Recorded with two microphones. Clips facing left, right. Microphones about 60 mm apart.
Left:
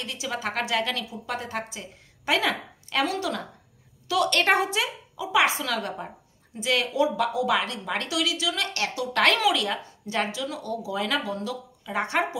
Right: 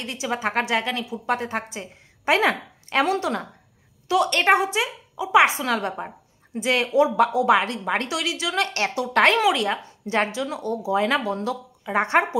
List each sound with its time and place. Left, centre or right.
0.0 s a woman's voice: right
4.3 s a woman's voice: centre
5.3 s a woman's voice: right